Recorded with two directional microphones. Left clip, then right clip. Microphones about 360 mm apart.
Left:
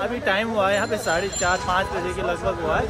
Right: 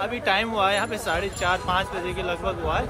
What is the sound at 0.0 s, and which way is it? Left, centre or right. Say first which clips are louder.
Speech: left 1 dB; centre.